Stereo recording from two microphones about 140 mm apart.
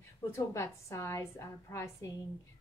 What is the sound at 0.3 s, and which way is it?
A woman's voice, 20° left (ahead or behind).